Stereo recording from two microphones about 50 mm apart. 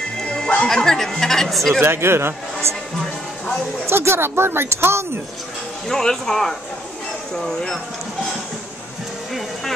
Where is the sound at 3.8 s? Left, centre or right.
Right.